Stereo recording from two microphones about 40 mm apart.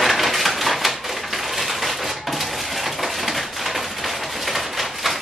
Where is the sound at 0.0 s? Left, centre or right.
Centre.